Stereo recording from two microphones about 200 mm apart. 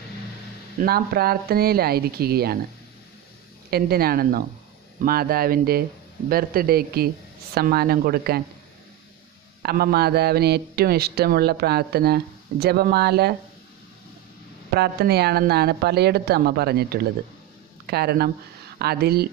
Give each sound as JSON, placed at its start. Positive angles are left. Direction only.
{"t": 0.7, "sound": "speech", "side_deg": -50}
{"t": 3.7, "sound": "speech", "side_deg": -50}
{"t": 9.6, "sound": "speech", "side_deg": -50}
{"t": 14.8, "sound": "speech", "side_deg": -55}